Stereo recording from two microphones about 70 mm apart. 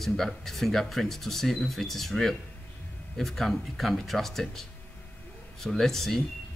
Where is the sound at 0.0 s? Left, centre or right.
Centre.